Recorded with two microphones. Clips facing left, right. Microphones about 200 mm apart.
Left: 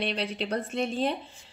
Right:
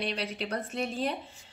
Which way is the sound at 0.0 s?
30° left (ahead or behind).